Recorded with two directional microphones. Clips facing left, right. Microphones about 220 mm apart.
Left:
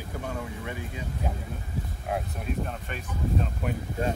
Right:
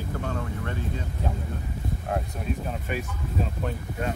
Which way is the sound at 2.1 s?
Centre (ahead or behind).